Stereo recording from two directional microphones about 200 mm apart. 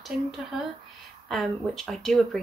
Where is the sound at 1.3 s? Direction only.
Centre (ahead or behind).